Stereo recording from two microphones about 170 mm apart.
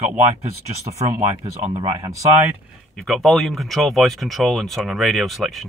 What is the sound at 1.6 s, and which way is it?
Speech, 40° right (ahead or behind).